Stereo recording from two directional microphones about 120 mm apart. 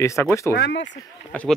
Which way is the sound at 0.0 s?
20° left (ahead or behind).